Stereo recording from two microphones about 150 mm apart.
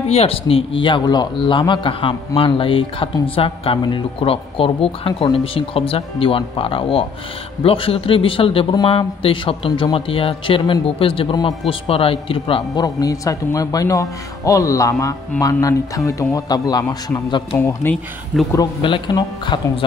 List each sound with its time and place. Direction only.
0.1 s a man's voice: 40° left (ahead or behind)
9.7 s speech: 25° left (ahead or behind)
9.9 s a man's voice: 40° left (ahead or behind)
12.8 s speech: 25° left (ahead or behind)
17.6 s speech: 15° left (ahead or behind)
18.5 s a man's voice: 30° left (ahead or behind)